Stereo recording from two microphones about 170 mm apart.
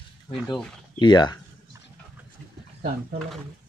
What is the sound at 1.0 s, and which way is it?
Speech, 25° left (ahead or behind).